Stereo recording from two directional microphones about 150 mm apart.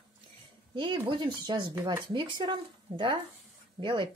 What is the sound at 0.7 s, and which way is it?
Speech, 30° right (ahead or behind).